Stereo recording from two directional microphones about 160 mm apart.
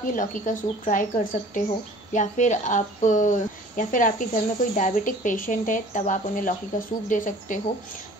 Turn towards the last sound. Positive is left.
turn(degrees=55)  # may be behind; listen again after turning